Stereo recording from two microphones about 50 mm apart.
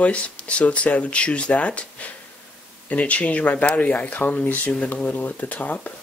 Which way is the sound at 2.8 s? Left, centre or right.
Left.